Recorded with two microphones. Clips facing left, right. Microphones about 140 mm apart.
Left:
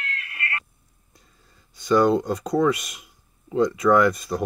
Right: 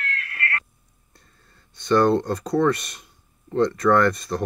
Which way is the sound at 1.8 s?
Centre (ahead or behind).